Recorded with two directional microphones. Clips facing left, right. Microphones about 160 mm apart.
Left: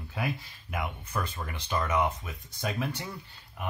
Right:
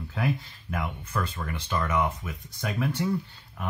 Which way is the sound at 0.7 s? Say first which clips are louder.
Right 2 dB; 15° left (ahead or behind).